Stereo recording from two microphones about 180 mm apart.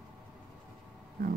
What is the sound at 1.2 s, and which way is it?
Speech, 50° right (ahead or behind).